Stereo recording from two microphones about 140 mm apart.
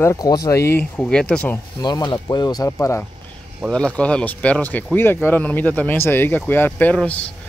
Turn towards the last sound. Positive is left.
turn(degrees=10)  # may be behind; listen again after turning